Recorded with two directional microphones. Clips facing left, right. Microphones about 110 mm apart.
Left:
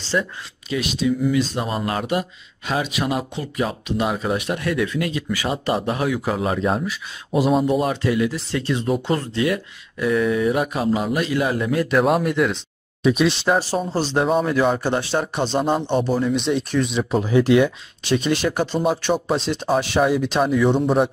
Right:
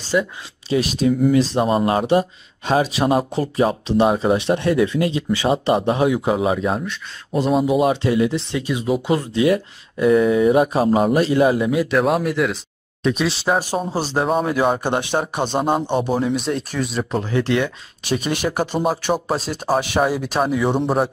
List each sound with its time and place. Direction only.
0.1 s speech: 10° right (ahead or behind)
0.7 s speech: 40° right (ahead or behind)
1.5 s speech: 30° right (ahead or behind)
6.3 s speech: 10° right (ahead or behind)
7.6 s speech: 10° right (ahead or behind)
8.5 s speech: 15° right (ahead or behind)
9.5 s speech: 25° right (ahead or behind)
11.5 s speech: 10° right (ahead or behind)
17.2 s speech: 15° left (ahead or behind)
18.0 s speech: 10° right (ahead or behind)